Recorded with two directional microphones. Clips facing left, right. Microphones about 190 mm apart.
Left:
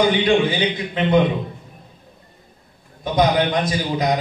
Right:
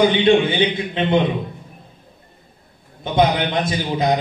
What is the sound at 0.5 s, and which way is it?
Speech, 25° right (ahead or behind).